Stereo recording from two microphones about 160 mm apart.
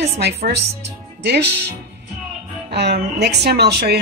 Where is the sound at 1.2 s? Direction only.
90° right.